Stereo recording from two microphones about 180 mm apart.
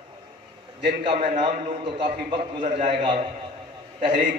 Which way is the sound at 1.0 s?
35° right (ahead or behind).